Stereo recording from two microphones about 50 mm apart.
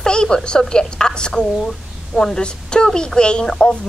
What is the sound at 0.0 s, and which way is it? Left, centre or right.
A woman's voice, centre.